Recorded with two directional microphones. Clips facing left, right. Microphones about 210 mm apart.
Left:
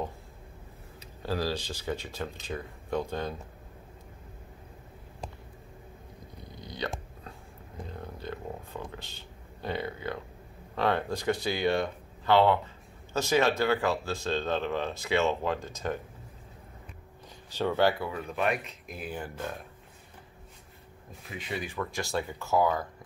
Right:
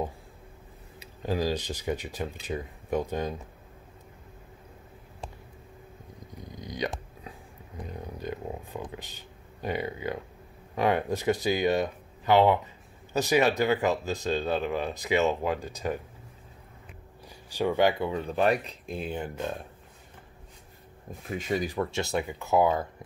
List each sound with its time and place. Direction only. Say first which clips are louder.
0.9 s speech: right 3 dB; 15° right (ahead or behind)
6.5 s hiccup: right 4 dB; 15° right (ahead or behind)
7.2 s a sound: right 3 dB; 15° right (ahead or behind)
9.6 s speech: right 2 dB; 15° right (ahead or behind)
17.5 s speech: right 2 dB; 15° right (ahead or behind)
21.3 s speech: right 7 dB; 45° right (ahead or behind)
21.9 s speech: right 3 dB; 20° right (ahead or behind)